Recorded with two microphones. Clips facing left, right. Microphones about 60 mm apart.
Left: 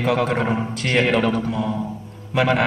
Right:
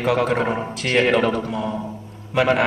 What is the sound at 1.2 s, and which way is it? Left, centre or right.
Speech, right.